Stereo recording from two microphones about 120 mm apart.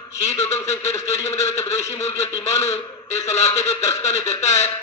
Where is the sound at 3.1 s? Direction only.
70° left (ahead or behind).